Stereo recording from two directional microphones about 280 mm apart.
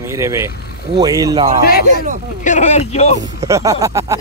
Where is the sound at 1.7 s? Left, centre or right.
Left.